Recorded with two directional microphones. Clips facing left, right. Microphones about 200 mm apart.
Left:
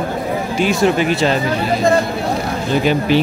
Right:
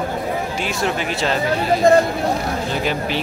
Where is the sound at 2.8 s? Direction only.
Centre (ahead or behind).